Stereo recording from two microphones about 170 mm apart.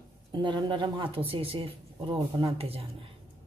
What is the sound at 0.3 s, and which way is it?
A man's voice, 25° right (ahead or behind).